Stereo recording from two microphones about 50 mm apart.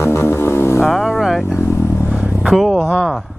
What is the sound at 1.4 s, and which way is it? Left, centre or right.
Vehicle, left.